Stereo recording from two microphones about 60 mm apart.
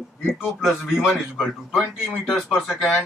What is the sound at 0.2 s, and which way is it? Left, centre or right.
A man's voice, centre.